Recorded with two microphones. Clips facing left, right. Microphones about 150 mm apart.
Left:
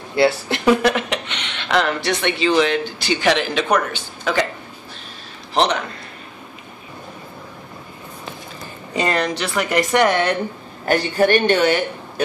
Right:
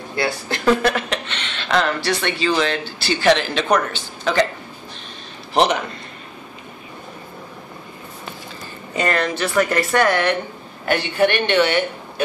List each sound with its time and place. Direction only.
0.1 s speech: 25° left (ahead or behind); by 4.5 s 10° left (ahead or behind)
5.5 s a man's voice: 5° right (ahead or behind)
8.9 s speech: 15° left (ahead or behind)
10.9 s speech: 40° left (ahead or behind)